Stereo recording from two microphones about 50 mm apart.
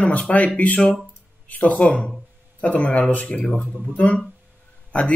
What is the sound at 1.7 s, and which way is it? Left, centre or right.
Speech, left.